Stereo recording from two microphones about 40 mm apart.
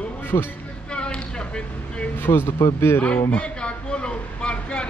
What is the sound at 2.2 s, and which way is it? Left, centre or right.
Speech, left.